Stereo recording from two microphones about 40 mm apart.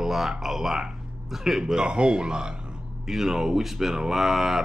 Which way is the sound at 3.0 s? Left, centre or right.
Centre.